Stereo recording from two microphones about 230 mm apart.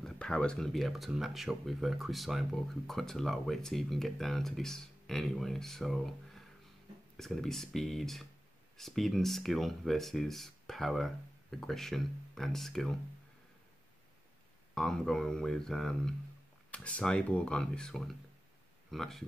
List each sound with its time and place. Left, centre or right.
0.0 s speech: centre
14.7 s speech: centre